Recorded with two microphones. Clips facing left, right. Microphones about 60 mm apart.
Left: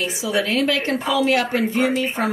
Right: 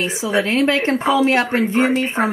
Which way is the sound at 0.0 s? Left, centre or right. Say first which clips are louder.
Right 3 dB; right.